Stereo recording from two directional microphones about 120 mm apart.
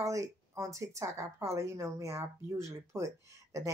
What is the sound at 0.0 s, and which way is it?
Speech, 25° right (ahead or behind).